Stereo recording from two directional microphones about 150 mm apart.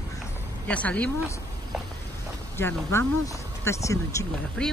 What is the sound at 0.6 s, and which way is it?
Speech, 10° left (ahead or behind).